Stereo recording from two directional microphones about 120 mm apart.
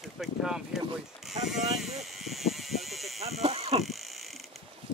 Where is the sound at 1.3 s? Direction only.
Centre (ahead or behind).